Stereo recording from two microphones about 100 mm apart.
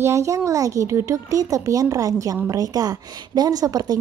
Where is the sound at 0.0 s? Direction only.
30° right (ahead or behind).